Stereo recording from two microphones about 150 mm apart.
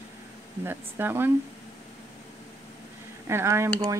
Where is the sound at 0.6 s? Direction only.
15° right (ahead or behind).